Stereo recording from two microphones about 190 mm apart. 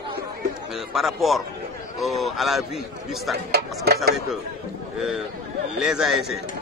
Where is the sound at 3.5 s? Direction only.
55° right (ahead or behind).